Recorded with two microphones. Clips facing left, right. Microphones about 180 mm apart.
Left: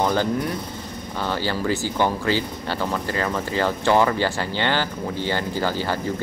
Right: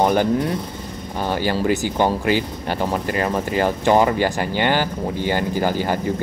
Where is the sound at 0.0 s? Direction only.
15° right (ahead or behind).